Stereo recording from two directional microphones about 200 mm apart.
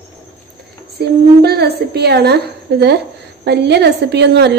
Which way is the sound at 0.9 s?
50° right (ahead or behind).